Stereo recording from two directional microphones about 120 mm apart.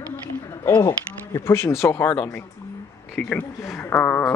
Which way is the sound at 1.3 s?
20° left (ahead or behind).